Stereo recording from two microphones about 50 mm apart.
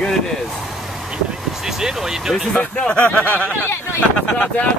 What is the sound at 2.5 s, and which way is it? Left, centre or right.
Speech, left.